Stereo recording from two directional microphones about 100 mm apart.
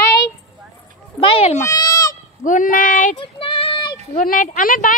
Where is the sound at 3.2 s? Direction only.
65° left (ahead or behind).